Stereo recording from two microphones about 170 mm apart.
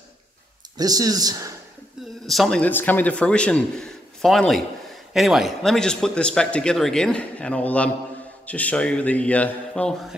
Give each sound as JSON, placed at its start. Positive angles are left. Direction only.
{"t": 0.7, "sound": "speech", "side_deg": -20}
{"t": 2.2, "sound": "a man's voice", "side_deg": 0}